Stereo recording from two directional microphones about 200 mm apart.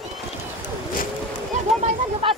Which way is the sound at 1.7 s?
Centre (ahead or behind).